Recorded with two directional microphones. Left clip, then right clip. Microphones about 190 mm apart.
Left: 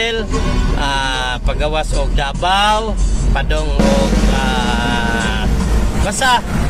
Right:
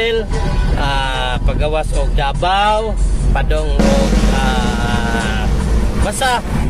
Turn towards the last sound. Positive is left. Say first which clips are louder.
# left 2 dB
turn(degrees=-10)  # may be behind; listen again after turning